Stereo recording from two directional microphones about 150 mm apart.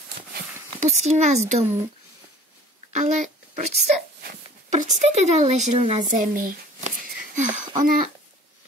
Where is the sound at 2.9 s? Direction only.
55° right (ahead or behind).